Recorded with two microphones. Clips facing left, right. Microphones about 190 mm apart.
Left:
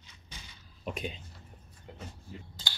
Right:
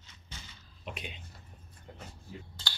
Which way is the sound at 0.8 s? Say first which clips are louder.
Left 6 dB; 40° left (ahead or behind).